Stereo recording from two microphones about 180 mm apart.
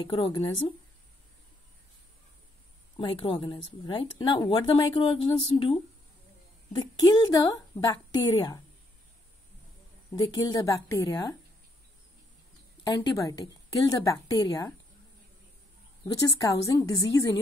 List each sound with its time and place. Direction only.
0.0 s a woman's voice: 30° left (ahead or behind)
3.0 s a woman's voice: 30° left (ahead or behind)
10.1 s a woman's voice: 25° left (ahead or behind)
12.8 s a woman's voice: 20° left (ahead or behind)
16.3 s a woman's voice: 20° left (ahead or behind)